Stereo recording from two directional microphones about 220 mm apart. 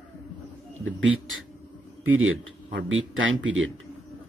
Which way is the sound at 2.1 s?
55° right (ahead or behind).